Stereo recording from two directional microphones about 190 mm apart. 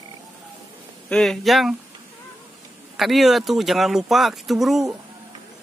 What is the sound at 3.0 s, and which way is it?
Speech, centre (ahead or behind).